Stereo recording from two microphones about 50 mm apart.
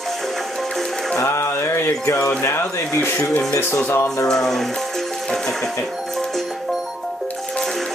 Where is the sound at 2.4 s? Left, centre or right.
Left.